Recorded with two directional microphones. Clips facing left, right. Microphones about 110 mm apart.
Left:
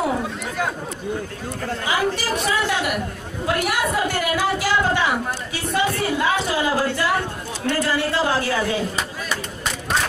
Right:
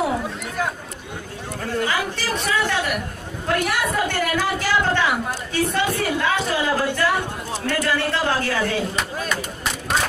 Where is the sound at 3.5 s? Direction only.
10° left (ahead or behind).